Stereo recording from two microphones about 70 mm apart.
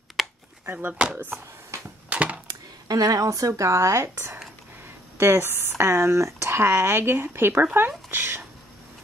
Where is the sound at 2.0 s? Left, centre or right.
Centre.